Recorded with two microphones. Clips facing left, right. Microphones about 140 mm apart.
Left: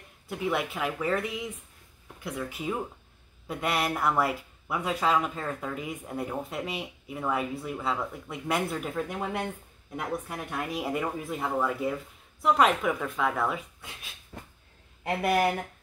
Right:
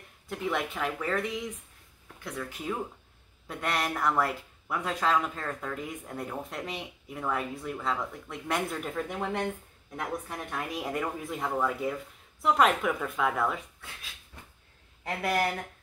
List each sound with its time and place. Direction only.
0.3 s speech: 5° left (ahead or behind)
15.0 s speech: 15° left (ahead or behind)